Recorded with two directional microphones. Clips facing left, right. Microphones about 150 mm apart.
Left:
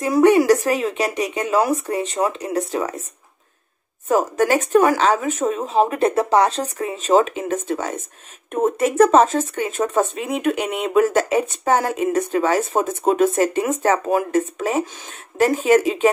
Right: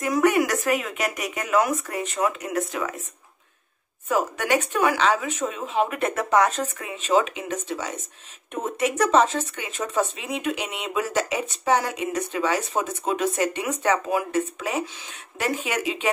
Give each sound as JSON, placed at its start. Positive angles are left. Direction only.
{"t": 0.0, "sound": "speech", "side_deg": 30}
{"t": 4.1, "sound": "speech", "side_deg": 40}